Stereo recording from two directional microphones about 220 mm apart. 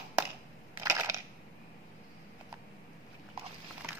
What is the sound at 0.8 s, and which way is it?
Crushing, 15° right (ahead or behind).